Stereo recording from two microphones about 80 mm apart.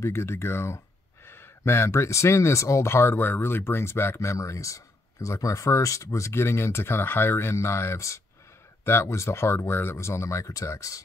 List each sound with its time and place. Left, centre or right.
0.0 s speech: left